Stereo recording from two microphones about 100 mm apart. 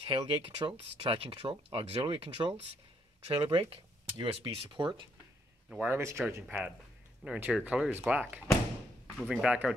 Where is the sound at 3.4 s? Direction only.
55° right (ahead or behind).